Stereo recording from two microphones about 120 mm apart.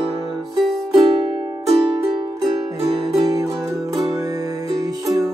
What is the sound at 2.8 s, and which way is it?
Music, 50° right (ahead or behind).